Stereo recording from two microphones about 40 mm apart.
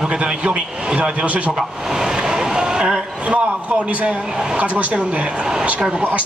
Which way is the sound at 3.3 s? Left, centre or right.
Right.